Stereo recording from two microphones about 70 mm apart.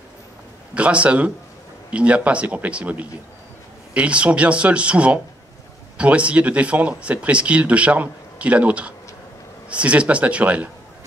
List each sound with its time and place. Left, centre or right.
0.7 s speech: centre